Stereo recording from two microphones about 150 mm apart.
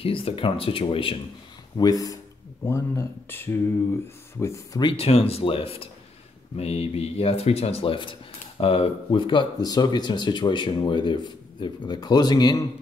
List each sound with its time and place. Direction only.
0.0 s speech: 35° left (ahead or behind)
1.8 s speech: 25° left (ahead or behind)
4.8 s speech: 40° left (ahead or behind)